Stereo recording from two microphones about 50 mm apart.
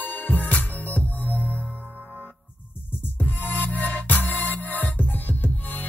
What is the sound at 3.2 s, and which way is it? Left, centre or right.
Music, left.